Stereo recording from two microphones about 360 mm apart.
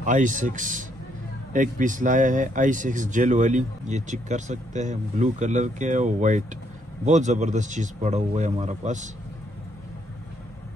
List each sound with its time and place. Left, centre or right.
0.0 s speech: right